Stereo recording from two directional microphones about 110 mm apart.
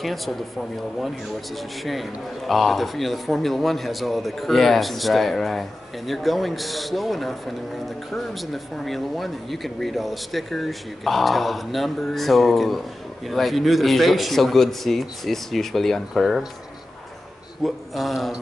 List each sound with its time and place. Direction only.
0.0 s speech: centre (ahead or behind)
17.6 s speech: centre (ahead or behind)